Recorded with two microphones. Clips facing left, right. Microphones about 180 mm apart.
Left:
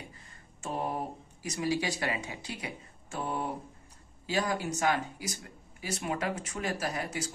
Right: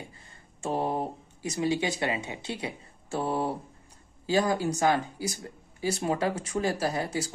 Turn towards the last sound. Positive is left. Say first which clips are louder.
# right 5 dB
turn(degrees=-30)  # may be behind; listen again after turning